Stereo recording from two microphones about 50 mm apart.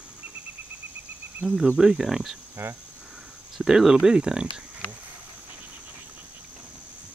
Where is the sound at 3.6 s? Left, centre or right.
Centre.